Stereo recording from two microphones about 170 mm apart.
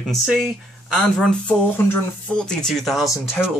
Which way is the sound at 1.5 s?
10° left (ahead or behind).